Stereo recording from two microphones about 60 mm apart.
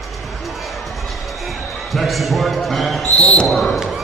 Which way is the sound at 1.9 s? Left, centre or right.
Centre.